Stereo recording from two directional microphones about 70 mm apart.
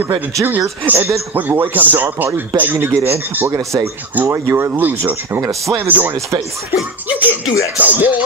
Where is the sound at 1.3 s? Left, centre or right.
Right.